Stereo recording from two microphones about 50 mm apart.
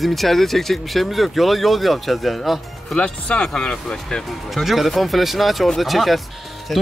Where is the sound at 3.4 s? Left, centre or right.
Centre.